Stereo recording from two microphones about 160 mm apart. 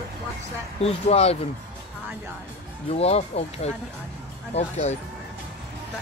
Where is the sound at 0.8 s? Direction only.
40° left (ahead or behind).